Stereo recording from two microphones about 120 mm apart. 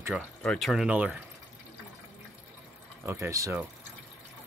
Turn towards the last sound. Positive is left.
turn(degrees=-25)  # may be behind; listen again after turning